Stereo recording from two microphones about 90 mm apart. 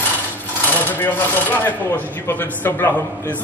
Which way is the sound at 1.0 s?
20° left (ahead or behind).